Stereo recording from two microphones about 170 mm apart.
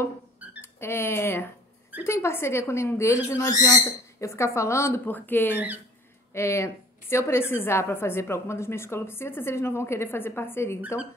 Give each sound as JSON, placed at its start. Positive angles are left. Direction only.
{"t": 0.6, "sound": "a woman's voice", "side_deg": 15}